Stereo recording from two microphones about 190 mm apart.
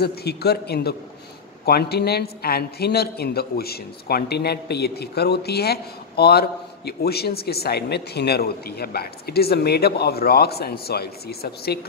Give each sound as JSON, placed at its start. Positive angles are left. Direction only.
{"t": 0.0, "sound": "a man's voice", "side_deg": 55}